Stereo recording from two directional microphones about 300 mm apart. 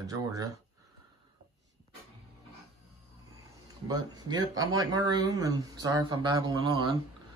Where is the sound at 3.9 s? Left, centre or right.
Centre.